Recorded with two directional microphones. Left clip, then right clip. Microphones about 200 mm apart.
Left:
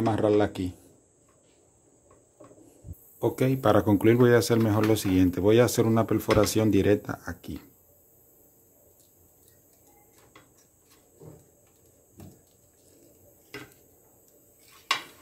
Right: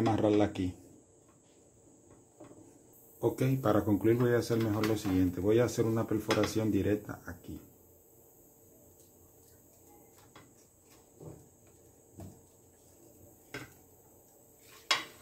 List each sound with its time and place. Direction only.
0.0 s speech: 20° left (ahead or behind)
3.2 s speech: 35° left (ahead or behind)